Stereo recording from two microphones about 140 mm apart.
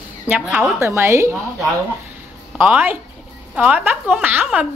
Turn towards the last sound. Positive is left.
turn(degrees=-10)  # may be behind; listen again after turning